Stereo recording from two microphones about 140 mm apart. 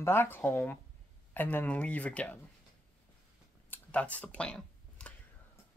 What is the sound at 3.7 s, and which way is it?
Computer keyboard, 10° left (ahead or behind).